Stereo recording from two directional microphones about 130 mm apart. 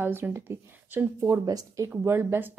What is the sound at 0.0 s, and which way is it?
A woman's voice, 15° right (ahead or behind).